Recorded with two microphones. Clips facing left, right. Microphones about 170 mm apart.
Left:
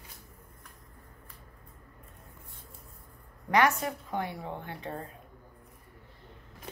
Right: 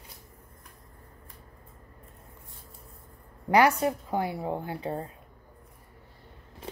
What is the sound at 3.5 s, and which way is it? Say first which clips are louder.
A woman's voice: right 4 dB; 30° right (ahead or behind).